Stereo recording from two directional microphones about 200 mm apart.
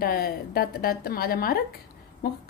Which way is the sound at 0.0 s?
50° left (ahead or behind).